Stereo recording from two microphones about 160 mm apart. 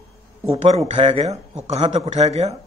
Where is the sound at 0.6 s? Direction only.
45° right (ahead or behind).